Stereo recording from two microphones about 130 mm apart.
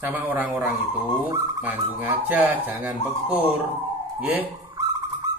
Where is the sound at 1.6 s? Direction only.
15° right (ahead or behind).